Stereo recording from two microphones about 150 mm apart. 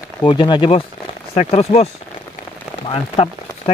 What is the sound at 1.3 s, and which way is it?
Speech, 45° left (ahead or behind).